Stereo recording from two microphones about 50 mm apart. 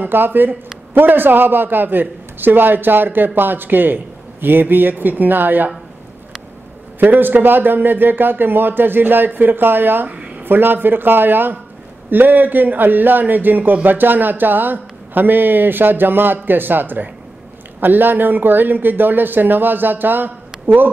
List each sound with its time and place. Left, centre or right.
0.0 s speech: right
7.0 s speech: right
10.0 s a sound: right
10.4 s speech: right